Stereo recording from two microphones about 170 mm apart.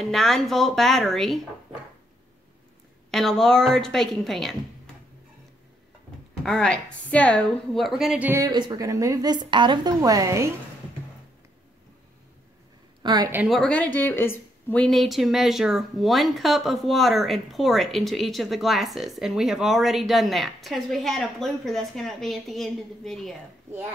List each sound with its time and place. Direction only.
0.0 s speech: centre (ahead or behind)
3.1 s speech: centre (ahead or behind)
6.4 s speech: 5° left (ahead or behind); by 8.5 s 10° right (ahead or behind)
8.5 s a woman's voice: 25° right (ahead or behind)
13.0 s a woman's voice: 25° right (ahead or behind)
13.3 s a woman's voice: 10° right (ahead or behind)
13.6 s speech: 5° left (ahead or behind)